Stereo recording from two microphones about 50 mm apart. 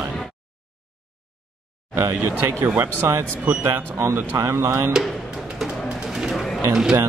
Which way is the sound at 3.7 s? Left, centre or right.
Right.